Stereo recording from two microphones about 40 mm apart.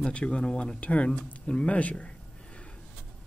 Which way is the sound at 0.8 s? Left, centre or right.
Left.